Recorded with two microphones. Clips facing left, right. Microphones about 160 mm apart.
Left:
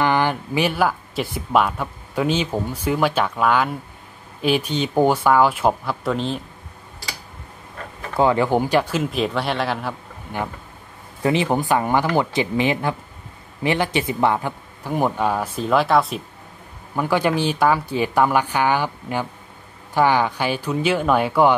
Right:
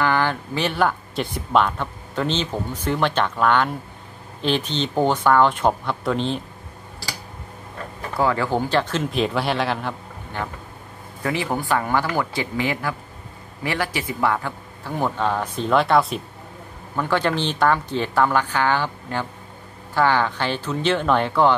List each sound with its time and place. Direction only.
0.0 s speech: 15° left (ahead or behind)
8.2 s speech: 20° left (ahead or behind); by 9.9 s centre (ahead or behind)
11.2 s speech: 20° left (ahead or behind); by 16.2 s centre (ahead or behind)
16.9 s speech: 10° left (ahead or behind)